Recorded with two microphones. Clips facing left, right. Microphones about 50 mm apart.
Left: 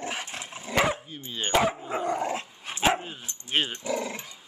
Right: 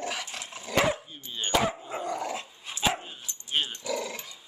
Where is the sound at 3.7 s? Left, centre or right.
Left.